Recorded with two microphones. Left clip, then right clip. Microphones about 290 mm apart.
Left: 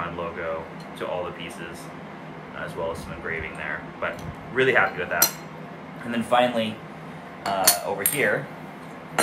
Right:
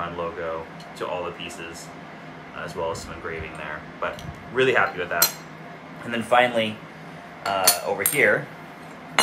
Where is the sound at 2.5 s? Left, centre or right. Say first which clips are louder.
Right 1 dB; centre.